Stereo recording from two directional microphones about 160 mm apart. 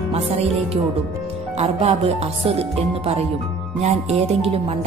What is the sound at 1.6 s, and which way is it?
A woman's voice, 40° right (ahead or behind).